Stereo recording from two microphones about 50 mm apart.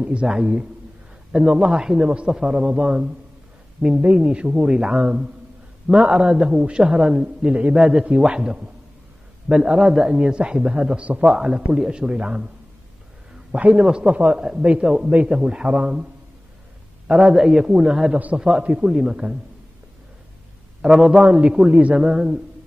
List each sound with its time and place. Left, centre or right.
0.0 s a man's voice: centre
4.0 s a man's voice: right
11.2 s a man's voice: centre
13.5 s a man's voice: right
13.7 s a man's voice: centre
17.1 s a man's voice: centre
18.1 s a man's voice: right
18.9 s a man's voice: centre
20.8 s a man's voice: centre